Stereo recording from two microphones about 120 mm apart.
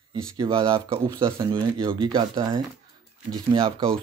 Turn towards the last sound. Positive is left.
turn(degrees=-45)  # may be behind; listen again after turning